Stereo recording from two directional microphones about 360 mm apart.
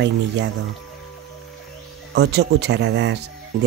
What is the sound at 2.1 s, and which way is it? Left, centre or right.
Speech, right.